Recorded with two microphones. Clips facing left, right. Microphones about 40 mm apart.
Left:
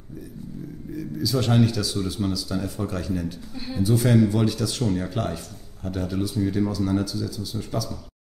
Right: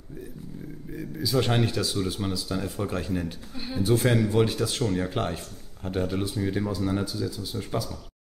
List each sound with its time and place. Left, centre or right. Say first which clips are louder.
0.9 s speech: left 1 dB; centre; by 4.1 s right
4.3 s speech: even; centre
6.3 s speech: left 4 dB; centre